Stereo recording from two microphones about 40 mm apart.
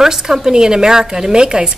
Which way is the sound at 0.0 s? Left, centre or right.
Centre.